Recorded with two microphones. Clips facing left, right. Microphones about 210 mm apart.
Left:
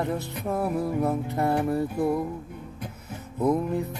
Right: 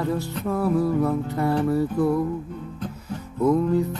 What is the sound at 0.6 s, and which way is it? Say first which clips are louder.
Music: right 5 dB; 25° left (ahead or behind).